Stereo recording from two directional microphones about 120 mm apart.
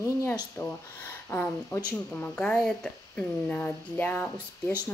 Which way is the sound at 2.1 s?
10° left (ahead or behind).